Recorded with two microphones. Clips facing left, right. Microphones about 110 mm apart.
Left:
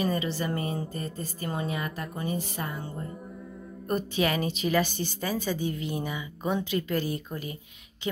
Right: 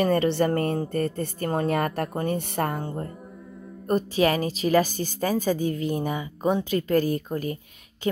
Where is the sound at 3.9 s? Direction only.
35° right (ahead or behind).